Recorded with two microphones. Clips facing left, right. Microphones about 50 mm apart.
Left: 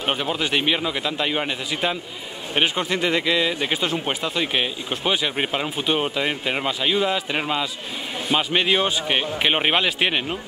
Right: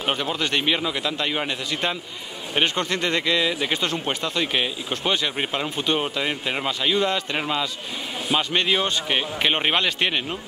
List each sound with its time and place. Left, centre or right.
0.0 s speech: centre